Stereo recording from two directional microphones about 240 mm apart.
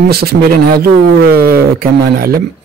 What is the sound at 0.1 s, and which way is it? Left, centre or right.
Speech, right.